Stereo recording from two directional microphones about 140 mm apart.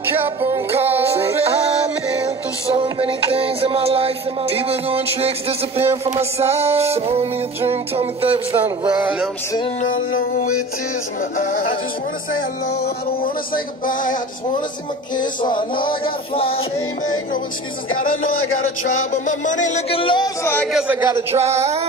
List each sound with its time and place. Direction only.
0.4 s music: 15° right (ahead or behind)
3.0 s music: 40° right (ahead or behind)
8.6 s music: 10° right (ahead or behind)
15.1 s music: 35° left (ahead or behind)
19.2 s music: 65° left (ahead or behind)
19.9 s music: 35° left (ahead or behind)
20.6 s a man's voice: 5° right (ahead or behind)
21.3 s music: 50° right (ahead or behind)